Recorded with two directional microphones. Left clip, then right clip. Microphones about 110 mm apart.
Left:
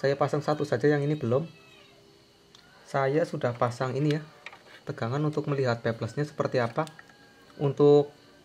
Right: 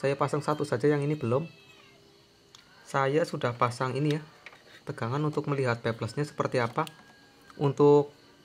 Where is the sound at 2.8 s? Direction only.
40° right (ahead or behind).